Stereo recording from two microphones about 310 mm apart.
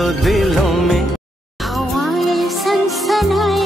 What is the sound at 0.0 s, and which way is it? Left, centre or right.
Music, centre.